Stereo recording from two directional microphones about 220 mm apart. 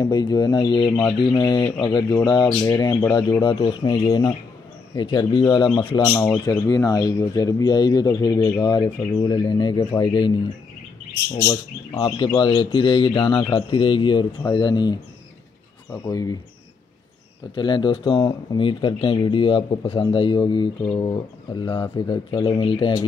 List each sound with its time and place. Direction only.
0.0 s speech: 20° left (ahead or behind)
6.0 s speech: 10° left (ahead or behind)
11.3 s speech: 15° left (ahead or behind)
16.1 s speech: 15° left (ahead or behind)
17.6 s speech: 20° left (ahead or behind)